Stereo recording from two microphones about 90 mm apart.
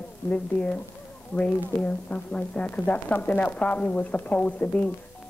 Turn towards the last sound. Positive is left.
turn(degrees=15)  # may be behind; listen again after turning